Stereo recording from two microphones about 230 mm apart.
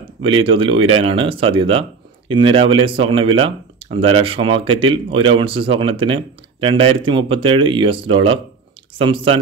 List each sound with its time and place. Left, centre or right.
0.2 s speech: right